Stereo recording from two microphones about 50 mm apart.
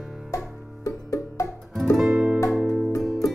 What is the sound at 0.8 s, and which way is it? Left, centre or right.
Music, left.